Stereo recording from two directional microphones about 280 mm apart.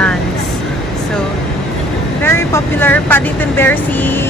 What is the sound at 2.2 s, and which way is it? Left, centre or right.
Speech, centre.